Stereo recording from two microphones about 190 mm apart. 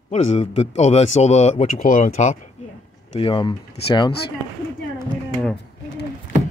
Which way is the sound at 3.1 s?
25° left (ahead or behind).